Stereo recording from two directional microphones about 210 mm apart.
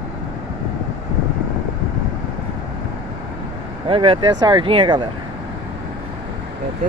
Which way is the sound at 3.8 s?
25° right (ahead or behind).